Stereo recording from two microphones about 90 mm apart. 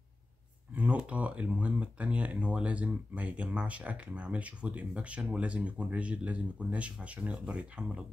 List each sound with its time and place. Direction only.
0.7 s speech: 15° right (ahead or behind)